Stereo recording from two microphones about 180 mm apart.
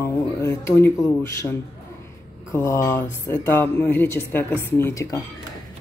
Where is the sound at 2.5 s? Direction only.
15° left (ahead or behind).